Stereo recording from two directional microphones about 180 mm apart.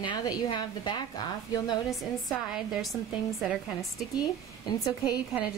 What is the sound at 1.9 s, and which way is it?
A woman's voice, centre (ahead or behind).